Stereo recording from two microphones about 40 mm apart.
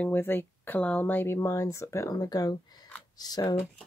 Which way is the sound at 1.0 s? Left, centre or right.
Left.